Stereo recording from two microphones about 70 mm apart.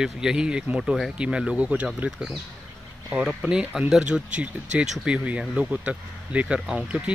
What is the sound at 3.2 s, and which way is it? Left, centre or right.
Speech, centre.